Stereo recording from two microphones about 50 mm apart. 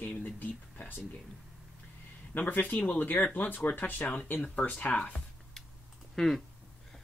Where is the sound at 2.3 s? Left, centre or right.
Left.